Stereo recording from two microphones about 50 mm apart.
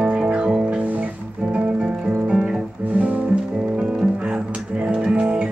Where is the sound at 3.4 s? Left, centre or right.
Centre.